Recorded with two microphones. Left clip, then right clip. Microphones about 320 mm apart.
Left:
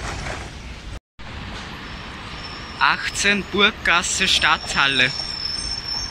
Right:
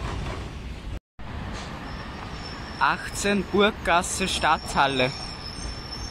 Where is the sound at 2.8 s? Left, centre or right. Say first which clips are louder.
Left 5 dB; centre.